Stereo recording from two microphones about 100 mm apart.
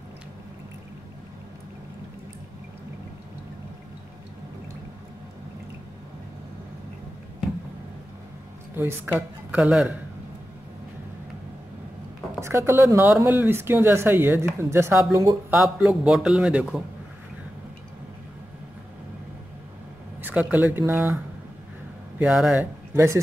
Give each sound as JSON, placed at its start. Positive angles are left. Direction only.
{"t": 8.7, "sound": "speech", "side_deg": -20}
{"t": 12.4, "sound": "speech", "side_deg": -30}
{"t": 15.5, "sound": "a man's voice", "side_deg": -5}
{"t": 20.2, "sound": "a sound", "side_deg": -20}
{"t": 20.5, "sound": "speech", "side_deg": -20}
{"t": 22.2, "sound": "speech", "side_deg": -15}